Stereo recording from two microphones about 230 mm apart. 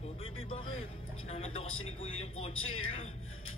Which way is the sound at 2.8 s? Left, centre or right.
Left.